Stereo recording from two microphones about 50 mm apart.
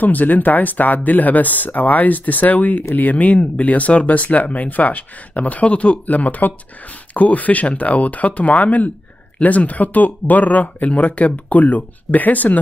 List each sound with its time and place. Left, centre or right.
0.0 s speech: left